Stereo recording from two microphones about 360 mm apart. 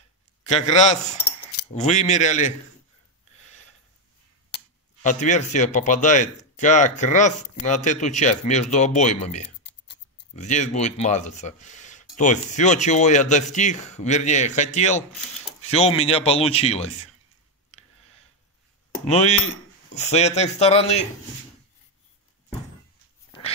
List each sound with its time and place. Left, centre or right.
0.5 s speech: centre
4.5 s a sound: left
5.0 s speech: centre
9.6 s scissors: left
12.2 s speech: centre
19.0 s speech: centre